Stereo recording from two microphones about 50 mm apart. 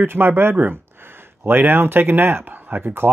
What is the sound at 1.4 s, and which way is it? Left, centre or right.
Speech, right.